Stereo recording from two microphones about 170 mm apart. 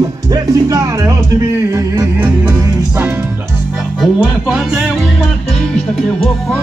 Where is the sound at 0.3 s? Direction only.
20° right (ahead or behind).